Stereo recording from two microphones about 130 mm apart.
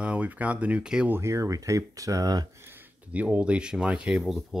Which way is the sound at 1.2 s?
25° right (ahead or behind).